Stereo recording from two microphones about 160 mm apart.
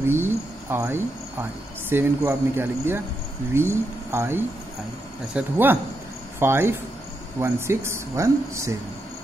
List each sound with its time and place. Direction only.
0.0 s cricket: 15° right (ahead or behind)
1.9 s speech: 15° right (ahead or behind)